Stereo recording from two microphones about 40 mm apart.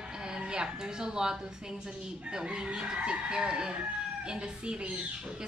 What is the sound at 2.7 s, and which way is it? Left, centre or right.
Speech, right.